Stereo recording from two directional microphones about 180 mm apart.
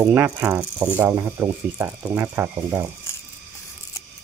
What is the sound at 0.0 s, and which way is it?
Speech, 10° right (ahead or behind).